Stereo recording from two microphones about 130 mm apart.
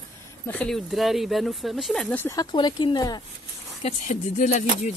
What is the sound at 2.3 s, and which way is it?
Speech, 35° left (ahead or behind).